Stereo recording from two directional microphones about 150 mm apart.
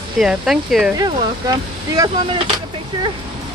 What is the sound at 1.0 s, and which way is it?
Speech, 25° right (ahead or behind).